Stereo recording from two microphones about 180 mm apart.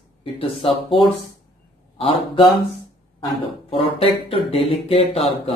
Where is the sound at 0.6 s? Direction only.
30° left (ahead or behind).